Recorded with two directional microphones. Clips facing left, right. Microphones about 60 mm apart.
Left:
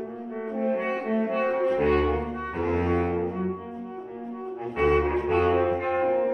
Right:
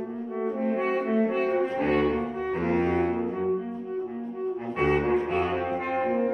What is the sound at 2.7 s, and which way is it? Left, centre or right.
Music, centre.